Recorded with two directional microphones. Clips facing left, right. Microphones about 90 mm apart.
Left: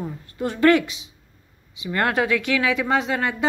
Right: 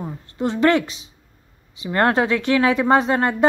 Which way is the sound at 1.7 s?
35° right (ahead or behind).